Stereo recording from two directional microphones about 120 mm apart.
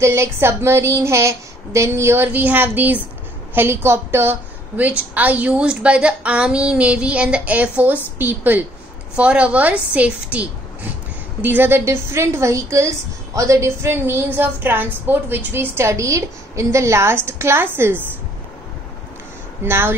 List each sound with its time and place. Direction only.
0.0 s a woman's voice: 20° right (ahead or behind)
19.6 s a woman's voice: 20° right (ahead or behind)